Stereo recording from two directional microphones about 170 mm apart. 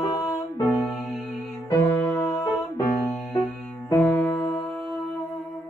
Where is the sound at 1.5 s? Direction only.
15° left (ahead or behind).